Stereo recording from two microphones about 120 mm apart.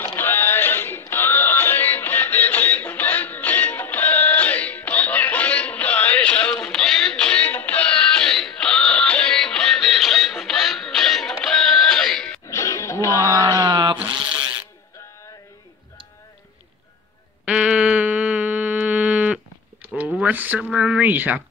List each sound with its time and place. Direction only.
0.0 s music: 20° left (ahead or behind)
12.4 s music: 25° left (ahead or behind)
13.2 s a sound: 35° right (ahead or behind)
14.0 s insect: 40° right (ahead or behind)
17.5 s a sound: 10° right (ahead or behind)
19.9 s speech: 10° right (ahead or behind)